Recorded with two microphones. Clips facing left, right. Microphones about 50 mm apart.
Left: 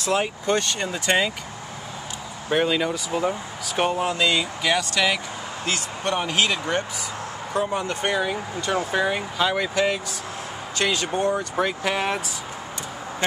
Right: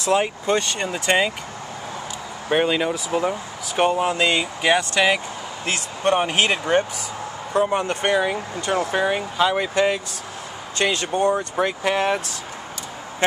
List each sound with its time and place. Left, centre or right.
0.0 s speech: centre
2.5 s speech: centre
4.2 s speech: right
8.1 s speech: right
8.9 s speech: centre